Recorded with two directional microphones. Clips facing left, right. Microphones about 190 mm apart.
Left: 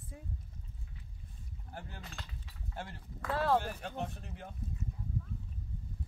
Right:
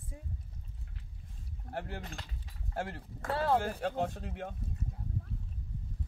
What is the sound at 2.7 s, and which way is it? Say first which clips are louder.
Speech: right 7 dB; 55° right (ahead or behind).